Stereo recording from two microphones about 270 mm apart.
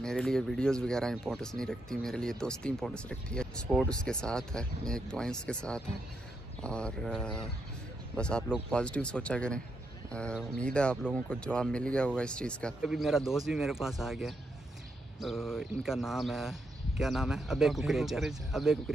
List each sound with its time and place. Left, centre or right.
0.0 s speech: centre